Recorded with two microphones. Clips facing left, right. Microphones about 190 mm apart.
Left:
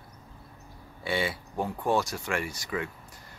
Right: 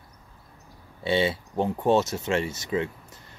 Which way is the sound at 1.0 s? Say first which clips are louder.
Right 6 dB; 25° right (ahead or behind).